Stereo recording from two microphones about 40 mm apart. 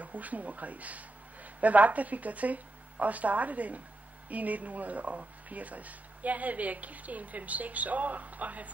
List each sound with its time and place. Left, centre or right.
0.0 s speech: right